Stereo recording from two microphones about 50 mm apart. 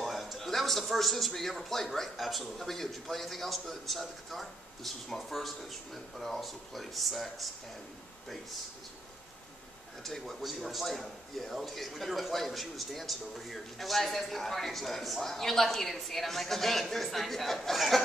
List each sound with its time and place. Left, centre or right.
0.0 s a man's voice: centre
10.2 s a man's voice: centre